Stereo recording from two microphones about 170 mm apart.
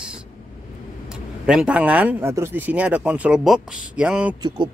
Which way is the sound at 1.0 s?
5° right (ahead or behind).